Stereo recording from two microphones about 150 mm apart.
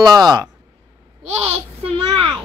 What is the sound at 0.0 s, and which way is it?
Speech, 25° right (ahead or behind).